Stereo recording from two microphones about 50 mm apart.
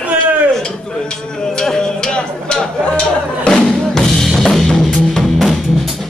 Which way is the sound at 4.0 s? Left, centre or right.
Centre.